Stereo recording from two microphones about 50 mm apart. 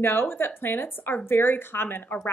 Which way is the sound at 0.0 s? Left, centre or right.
Left.